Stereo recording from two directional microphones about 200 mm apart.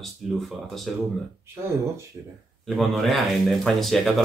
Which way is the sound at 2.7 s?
Centre (ahead or behind).